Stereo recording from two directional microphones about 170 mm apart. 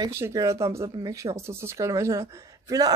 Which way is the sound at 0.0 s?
20° right (ahead or behind).